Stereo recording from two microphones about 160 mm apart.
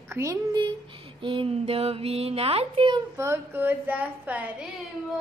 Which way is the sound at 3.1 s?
15° right (ahead or behind).